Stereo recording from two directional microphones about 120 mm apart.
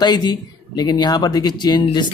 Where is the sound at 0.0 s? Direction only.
35° left (ahead or behind).